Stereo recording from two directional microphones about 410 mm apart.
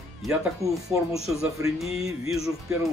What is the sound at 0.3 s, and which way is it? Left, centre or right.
Speech, centre.